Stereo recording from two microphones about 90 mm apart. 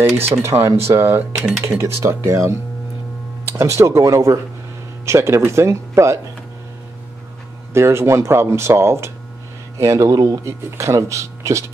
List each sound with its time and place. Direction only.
0.2 s speech: 30° right (ahead or behind)
7.7 s speech: 30° right (ahead or behind)